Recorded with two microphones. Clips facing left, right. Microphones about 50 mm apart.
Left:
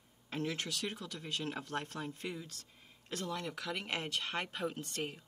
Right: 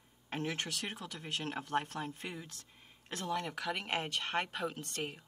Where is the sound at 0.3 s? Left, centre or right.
Right.